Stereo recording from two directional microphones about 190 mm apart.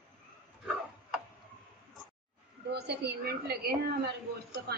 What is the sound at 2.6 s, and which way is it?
A woman's voice, 60° right (ahead or behind).